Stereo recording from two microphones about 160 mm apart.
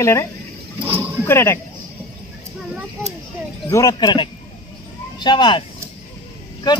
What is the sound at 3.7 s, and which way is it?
Speech, 25° left (ahead or behind).